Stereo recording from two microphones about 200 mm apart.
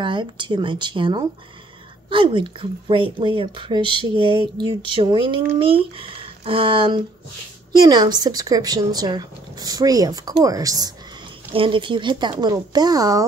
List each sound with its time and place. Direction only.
0.0 s speech: 25° right (ahead or behind)